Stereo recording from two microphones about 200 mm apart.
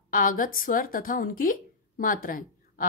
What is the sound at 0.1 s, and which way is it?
A woman's voice, 45° left (ahead or behind).